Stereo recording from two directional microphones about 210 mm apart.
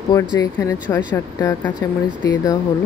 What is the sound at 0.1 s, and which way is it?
Speech, 15° left (ahead or behind).